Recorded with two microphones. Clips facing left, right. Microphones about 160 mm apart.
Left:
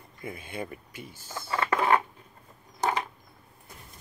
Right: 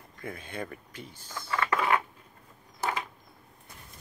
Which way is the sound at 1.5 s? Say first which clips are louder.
Left 3 dB; 25° left (ahead or behind).